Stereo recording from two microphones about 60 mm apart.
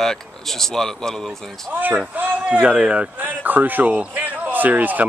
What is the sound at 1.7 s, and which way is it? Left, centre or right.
A man's voice, right.